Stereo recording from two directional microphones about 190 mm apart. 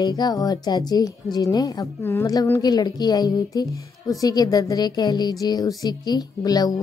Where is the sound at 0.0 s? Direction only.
20° left (ahead or behind).